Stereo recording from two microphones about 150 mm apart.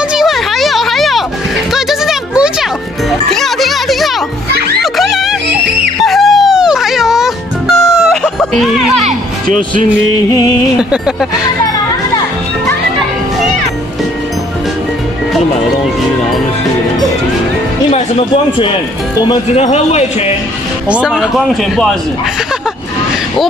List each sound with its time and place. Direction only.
0.1 s a sound: centre (ahead or behind)
1.7 s music: 5° right (ahead or behind)
9.0 s music: 60° right (ahead or behind)
10.8 s speech: 5° right (ahead or behind)
17.9 s speech: 45° left (ahead or behind)
19.2 s speech: 30° left (ahead or behind)
19.6 s a man's voice: 45° left (ahead or behind)
20.9 s speech: 5° right (ahead or behind)